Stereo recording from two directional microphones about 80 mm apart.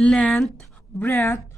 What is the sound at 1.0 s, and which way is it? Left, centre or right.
Speech, left.